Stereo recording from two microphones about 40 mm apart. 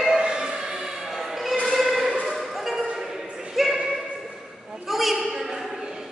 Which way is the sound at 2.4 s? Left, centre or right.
Centre.